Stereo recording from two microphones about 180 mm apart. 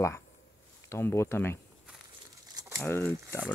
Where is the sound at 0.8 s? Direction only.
15° left (ahead or behind).